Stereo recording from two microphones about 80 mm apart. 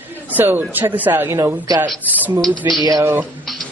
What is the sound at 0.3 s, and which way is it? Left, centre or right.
A man's voice, right.